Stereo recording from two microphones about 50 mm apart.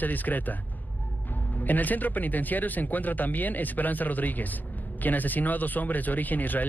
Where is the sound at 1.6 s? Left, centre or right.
Left.